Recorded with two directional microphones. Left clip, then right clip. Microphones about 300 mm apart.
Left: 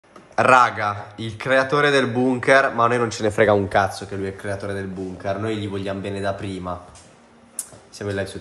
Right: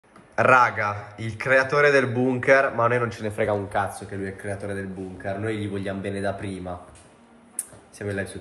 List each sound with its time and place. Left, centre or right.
0.4 s speech: centre
3.3 s speech: left
4.2 s speech: centre
8.0 s speech: centre